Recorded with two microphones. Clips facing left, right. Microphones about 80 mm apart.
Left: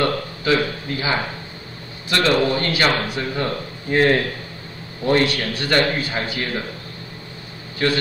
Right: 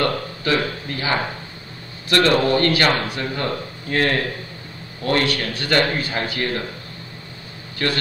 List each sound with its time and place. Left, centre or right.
0.0 s speech: centre